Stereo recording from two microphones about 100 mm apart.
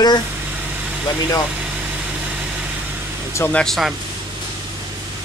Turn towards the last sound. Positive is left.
turn(degrees=5)  # may be behind; listen again after turning